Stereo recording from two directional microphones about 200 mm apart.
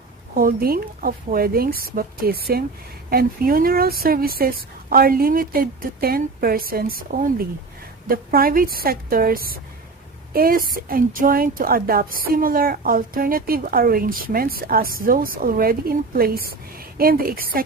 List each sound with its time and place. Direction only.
0.3 s a woman's voice: 45° right (ahead or behind)